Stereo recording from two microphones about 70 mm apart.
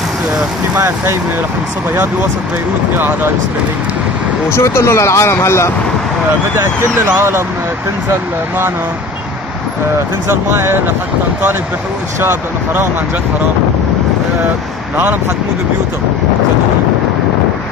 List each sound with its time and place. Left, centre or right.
0.7 s speech: right
3.0 s speech: right
4.5 s speech: left
7.2 s speech: right
10.2 s speech: right
12.2 s speech: right